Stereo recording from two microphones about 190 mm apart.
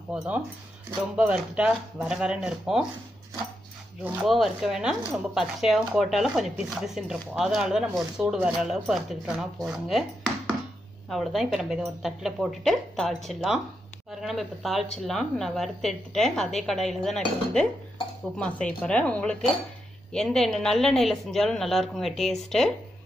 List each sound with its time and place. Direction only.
1.1 s speech: 5° right (ahead or behind)
4.0 s speech: 5° right (ahead or behind)